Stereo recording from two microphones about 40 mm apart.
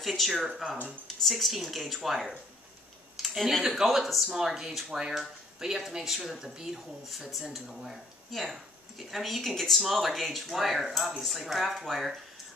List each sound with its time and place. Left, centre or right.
0.0 s speech: centre
3.2 s a sound: centre
3.6 s speech: centre
4.3 s speech: centre